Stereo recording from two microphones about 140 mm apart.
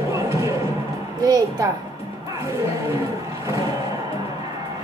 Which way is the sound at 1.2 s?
25° right (ahead or behind).